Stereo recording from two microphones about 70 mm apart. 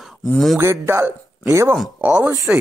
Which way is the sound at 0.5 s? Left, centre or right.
Right.